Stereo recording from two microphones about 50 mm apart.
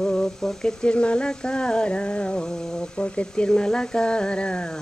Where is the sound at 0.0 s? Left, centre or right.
Centre.